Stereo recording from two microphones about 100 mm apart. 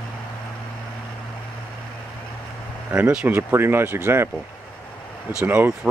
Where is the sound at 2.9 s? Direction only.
10° right (ahead or behind).